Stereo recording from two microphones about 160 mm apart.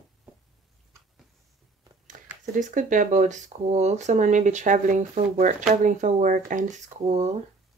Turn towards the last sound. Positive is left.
turn(degrees=-45)  # may be behind; listen again after turning